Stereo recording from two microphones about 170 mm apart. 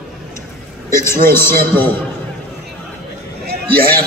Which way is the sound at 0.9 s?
15° left (ahead or behind).